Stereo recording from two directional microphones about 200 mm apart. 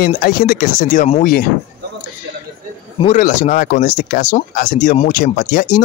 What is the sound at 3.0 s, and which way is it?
Speech, 40° left (ahead or behind).